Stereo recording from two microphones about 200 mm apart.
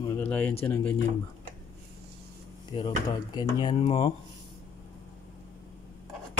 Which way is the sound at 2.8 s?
20° left (ahead or behind).